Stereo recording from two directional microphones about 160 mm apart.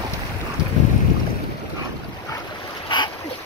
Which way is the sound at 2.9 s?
30° left (ahead or behind).